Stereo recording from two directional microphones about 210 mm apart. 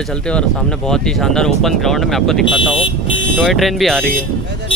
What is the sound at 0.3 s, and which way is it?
Speech, 5° left (ahead or behind).